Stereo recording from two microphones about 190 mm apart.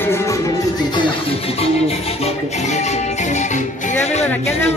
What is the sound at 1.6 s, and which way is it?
Music, 30° left (ahead or behind).